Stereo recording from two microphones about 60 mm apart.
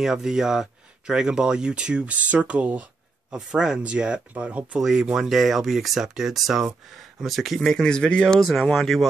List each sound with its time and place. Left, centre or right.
0.0 s speech: centre; by 3.3 s right
3.3 s speech: centre
4.7 s speech: centre
8.4 s speech: centre